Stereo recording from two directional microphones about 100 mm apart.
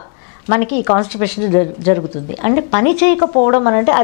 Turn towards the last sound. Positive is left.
turn(degrees=20)  # may be behind; listen again after turning